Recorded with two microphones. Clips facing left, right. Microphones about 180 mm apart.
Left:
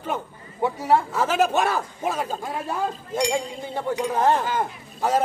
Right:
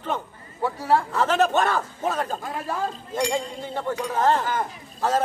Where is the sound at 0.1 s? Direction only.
20° left (ahead or behind).